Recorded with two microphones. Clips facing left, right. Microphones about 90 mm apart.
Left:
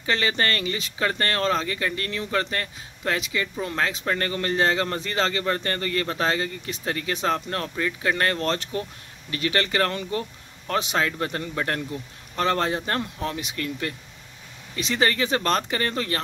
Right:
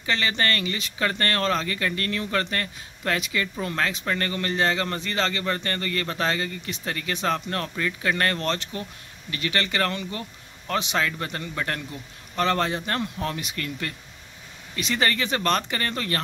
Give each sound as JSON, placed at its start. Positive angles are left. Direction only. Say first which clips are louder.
{"t": 0.0, "sound": "a man's voice", "louder": "left 1 dB", "side_deg": 30}
{"t": 8.4, "sound": "a man's voice", "louder": "left 2 dB", "side_deg": 35}